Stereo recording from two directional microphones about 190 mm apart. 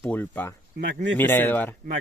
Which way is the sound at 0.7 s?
55° right (ahead or behind).